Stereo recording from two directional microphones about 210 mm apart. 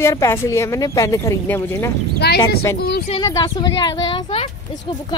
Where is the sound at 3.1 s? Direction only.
15° left (ahead or behind).